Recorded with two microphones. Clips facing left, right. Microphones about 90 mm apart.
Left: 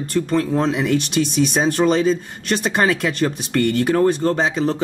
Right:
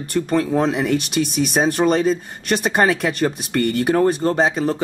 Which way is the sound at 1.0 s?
55° right (ahead or behind).